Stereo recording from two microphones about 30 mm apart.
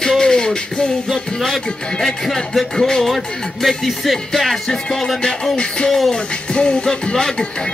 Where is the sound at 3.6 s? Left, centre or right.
Centre.